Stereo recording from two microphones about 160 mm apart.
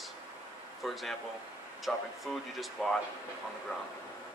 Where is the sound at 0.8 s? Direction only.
Centre (ahead or behind).